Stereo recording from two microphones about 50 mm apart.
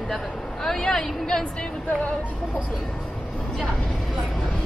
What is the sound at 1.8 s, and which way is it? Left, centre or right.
Music, left.